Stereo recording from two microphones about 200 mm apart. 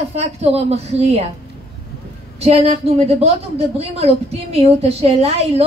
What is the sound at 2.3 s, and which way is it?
A woman's voice, 30° right (ahead or behind).